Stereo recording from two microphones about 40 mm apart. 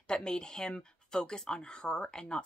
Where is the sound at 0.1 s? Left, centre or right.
Centre.